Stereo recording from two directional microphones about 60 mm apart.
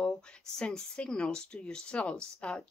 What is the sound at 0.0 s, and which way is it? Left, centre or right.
Speech, centre.